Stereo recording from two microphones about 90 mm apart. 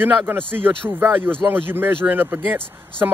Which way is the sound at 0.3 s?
20° right (ahead or behind).